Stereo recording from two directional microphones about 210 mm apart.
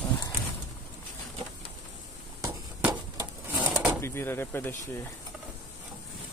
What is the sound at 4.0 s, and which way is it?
Speech, 10° left (ahead or behind).